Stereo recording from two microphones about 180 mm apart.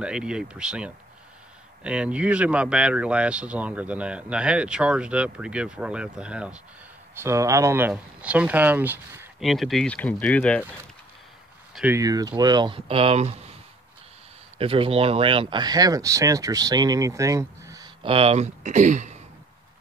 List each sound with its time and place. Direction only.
0.0 s speech: 5° right (ahead or behind)
7.2 s speech: 15° right (ahead or behind)
9.4 s speech: centre (ahead or behind)
11.7 s speech: 10° right (ahead or behind); by 13.6 s 35° right (ahead or behind)
14.6 s speech: 30° right (ahead or behind)